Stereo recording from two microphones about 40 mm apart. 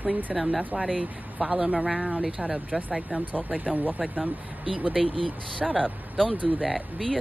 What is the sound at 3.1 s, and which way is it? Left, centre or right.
Speech, right.